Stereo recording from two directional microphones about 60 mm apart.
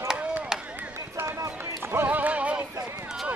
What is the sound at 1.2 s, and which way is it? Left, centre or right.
Run, right.